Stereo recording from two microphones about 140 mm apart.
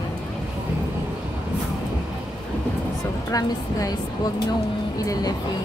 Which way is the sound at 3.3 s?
25° left (ahead or behind).